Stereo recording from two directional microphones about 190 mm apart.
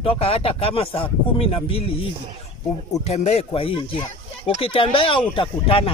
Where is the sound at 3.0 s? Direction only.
35° left (ahead or behind).